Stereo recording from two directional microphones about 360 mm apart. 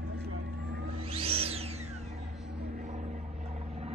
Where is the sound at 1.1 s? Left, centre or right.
Centre.